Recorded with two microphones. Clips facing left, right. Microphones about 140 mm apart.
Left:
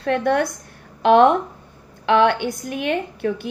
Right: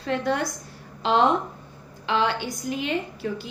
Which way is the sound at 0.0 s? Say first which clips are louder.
Left 6 dB; 55° left (ahead or behind).